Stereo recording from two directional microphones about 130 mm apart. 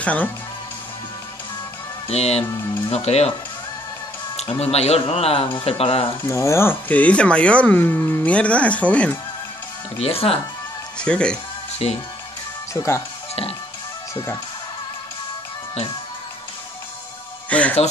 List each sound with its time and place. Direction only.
0.0 s speech: 10° left (ahead or behind)
2.0 s speech: 55° left (ahead or behind)
4.5 s speech: 50° left (ahead or behind)
6.2 s speech: 20° left (ahead or behind)
9.9 s speech: 50° left (ahead or behind)
11.0 s speech: 10° left (ahead or behind)
11.8 s speech: 50° left (ahead or behind)
12.7 s speech: 20° left (ahead or behind)
17.5 s speech: 10° left (ahead or behind)